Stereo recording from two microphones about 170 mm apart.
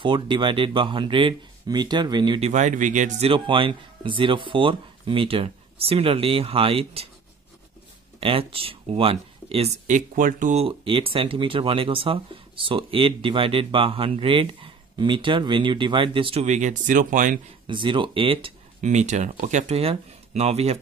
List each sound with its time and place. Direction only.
0.0 s speech: 30° right (ahead or behind)
2.5 s speech: 45° right (ahead or behind)
3.3 s speech: 30° right (ahead or behind)
8.2 s speech: 35° right (ahead or behind)
9.9 s speech: 50° right (ahead or behind)
17.6 s speech: 30° right (ahead or behind)
18.8 s speech: 45° right (ahead or behind)